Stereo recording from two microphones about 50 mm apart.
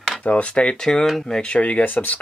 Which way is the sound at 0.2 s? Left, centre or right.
Left.